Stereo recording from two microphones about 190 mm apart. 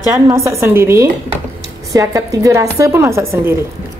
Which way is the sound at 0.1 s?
15° right (ahead or behind).